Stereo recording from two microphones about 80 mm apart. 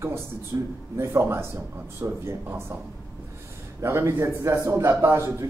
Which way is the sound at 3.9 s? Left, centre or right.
Right.